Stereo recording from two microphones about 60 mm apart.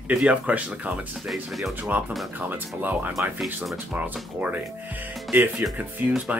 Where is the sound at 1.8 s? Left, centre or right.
Right.